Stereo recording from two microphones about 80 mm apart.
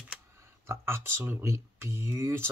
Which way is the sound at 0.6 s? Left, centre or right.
Right.